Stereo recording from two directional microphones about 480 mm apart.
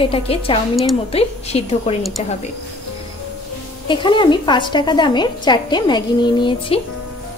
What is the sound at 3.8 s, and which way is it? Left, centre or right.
A woman's voice, centre.